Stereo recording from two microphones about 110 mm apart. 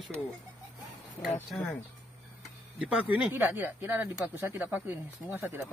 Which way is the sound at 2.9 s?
15° right (ahead or behind).